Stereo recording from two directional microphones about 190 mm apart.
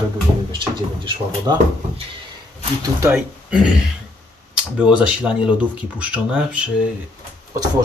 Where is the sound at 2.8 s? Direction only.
15° right (ahead or behind).